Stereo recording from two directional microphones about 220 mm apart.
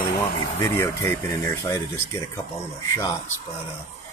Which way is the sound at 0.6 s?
10° left (ahead or behind).